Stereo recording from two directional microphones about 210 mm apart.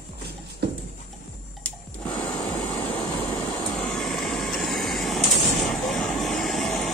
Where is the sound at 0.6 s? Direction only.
50° right (ahead or behind).